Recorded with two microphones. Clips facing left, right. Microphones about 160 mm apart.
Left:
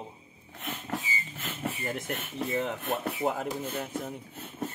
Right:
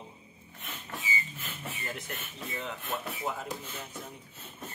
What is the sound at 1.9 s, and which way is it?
Speech, 50° left (ahead or behind).